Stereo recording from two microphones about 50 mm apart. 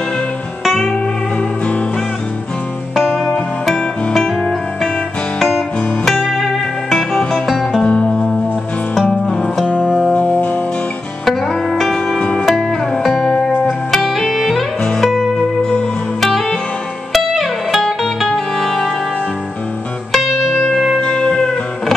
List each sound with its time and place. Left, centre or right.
4.1 s music: centre
6.3 s music: centre
7.8 s music: left
9.8 s music: centre
10.1 s music: left
11.2 s music: centre
12.2 s music: left
12.4 s music: centre
20.1 s music: centre
21.0 s music: centre